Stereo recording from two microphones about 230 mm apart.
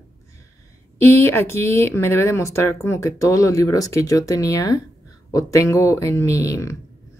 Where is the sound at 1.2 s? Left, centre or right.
Centre.